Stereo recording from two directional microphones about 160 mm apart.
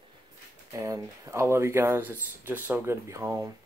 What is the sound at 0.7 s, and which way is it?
Speech, 20° right (ahead or behind).